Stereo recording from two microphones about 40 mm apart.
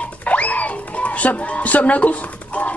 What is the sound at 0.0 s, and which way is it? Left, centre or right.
Music, left.